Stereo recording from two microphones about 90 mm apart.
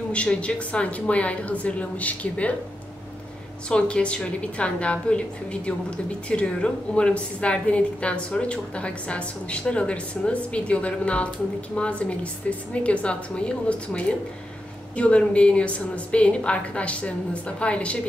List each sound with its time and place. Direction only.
0.1 s a woman's voice: 10° left (ahead or behind)
3.6 s a woman's voice: 10° left (ahead or behind)